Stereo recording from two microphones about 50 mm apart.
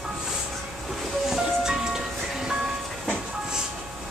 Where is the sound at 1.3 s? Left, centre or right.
Centre.